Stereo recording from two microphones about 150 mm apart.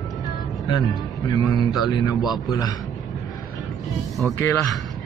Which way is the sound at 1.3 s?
25° left (ahead or behind).